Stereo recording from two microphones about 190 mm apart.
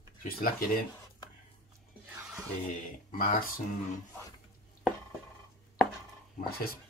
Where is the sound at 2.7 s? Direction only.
40° left (ahead or behind).